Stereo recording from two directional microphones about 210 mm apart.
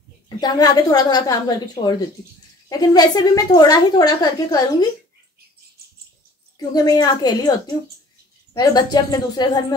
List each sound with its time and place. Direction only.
0.4 s a woman's voice: 20° left (ahead or behind)
6.7 s a woman's voice: 20° left (ahead or behind)